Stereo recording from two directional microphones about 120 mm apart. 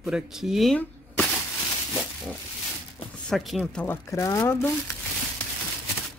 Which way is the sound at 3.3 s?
Centre (ahead or behind).